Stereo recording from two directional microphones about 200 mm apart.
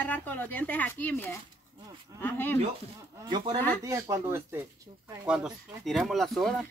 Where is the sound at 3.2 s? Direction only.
20° right (ahead or behind).